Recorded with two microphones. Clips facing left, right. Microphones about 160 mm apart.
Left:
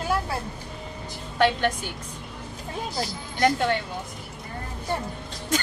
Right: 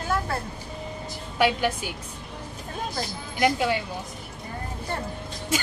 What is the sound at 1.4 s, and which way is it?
Speech, 10° right (ahead or behind).